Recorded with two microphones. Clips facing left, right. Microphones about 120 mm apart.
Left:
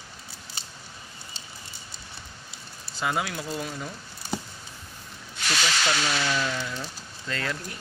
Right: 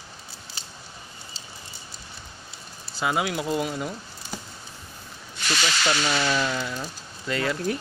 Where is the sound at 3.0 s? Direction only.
10° right (ahead or behind).